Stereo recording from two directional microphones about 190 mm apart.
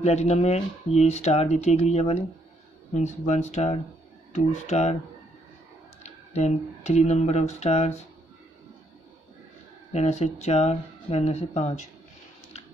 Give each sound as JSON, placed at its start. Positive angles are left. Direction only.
{"t": 0.0, "sound": "speech", "side_deg": 35}
{"t": 6.0, "sound": "speech", "side_deg": 35}
{"t": 9.9, "sound": "speech", "side_deg": 35}